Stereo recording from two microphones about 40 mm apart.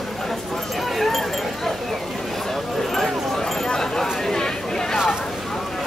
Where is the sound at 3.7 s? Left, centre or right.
Centre.